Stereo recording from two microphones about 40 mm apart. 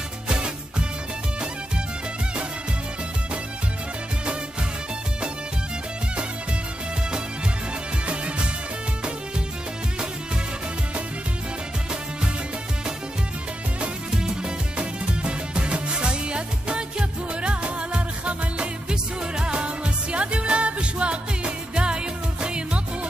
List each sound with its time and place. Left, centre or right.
0.3 s music: right
14.1 s music: centre